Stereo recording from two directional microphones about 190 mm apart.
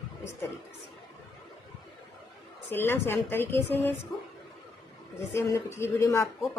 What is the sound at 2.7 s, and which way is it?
Speech, 10° left (ahead or behind).